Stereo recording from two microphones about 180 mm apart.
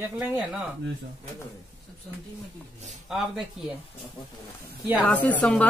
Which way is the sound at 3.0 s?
Centre (ahead or behind).